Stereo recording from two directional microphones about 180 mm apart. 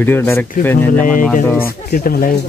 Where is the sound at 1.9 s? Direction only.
55° left (ahead or behind).